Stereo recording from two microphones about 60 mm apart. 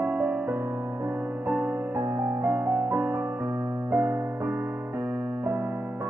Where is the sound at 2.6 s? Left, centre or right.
Right.